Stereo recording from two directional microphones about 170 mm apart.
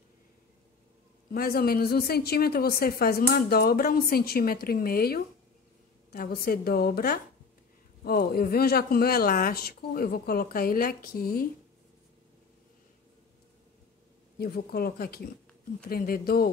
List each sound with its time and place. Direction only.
1.3 s a woman's voice: 60° left (ahead or behind)
14.4 s a woman's voice: 60° left (ahead or behind)